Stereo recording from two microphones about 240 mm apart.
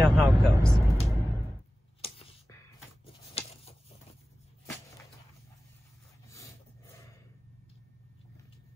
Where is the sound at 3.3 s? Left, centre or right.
Left.